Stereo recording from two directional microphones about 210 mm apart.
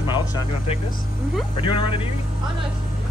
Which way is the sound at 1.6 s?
25° left (ahead or behind).